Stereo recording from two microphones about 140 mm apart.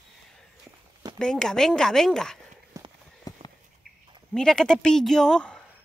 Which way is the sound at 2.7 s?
25° right (ahead or behind).